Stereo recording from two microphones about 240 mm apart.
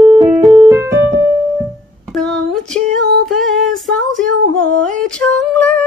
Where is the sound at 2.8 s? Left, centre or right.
Right.